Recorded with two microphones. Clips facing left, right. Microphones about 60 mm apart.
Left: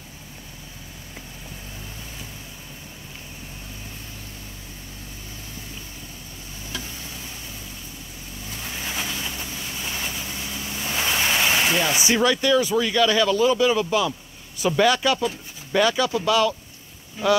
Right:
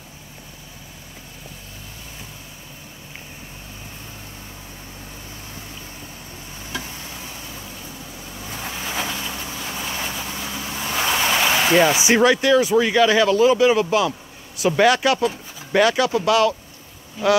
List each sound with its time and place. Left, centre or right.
8.5 s vehicle: right
11.4 s a sound: right
11.9 s speech: centre